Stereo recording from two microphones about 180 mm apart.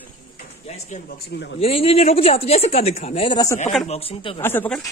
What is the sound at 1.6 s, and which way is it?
Speech, 35° left (ahead or behind).